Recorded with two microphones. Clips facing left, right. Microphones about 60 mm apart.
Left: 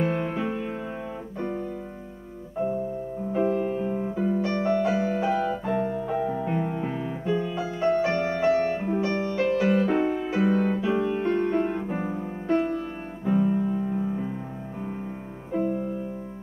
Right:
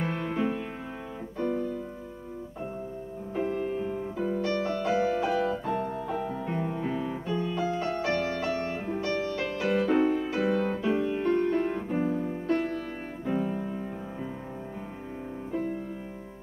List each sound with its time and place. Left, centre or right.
0.1 s music: centre
1.4 s keyboard: left
3.3 s music: centre
9.1 s music: left
13.2 s music: centre